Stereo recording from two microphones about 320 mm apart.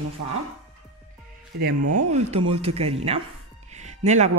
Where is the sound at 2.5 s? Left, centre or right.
Centre.